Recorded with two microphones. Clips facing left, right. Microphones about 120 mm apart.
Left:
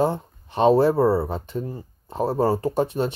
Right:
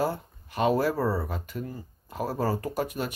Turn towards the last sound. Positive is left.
turn(degrees=30)  # may be behind; listen again after turning